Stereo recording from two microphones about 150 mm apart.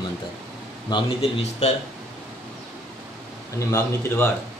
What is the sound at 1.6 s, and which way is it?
Speech, 45° left (ahead or behind).